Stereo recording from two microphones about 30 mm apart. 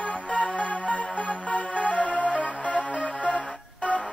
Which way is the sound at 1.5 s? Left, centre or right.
Left.